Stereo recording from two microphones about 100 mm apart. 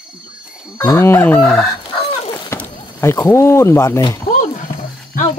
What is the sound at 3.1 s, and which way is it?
Speech, 30° left (ahead or behind).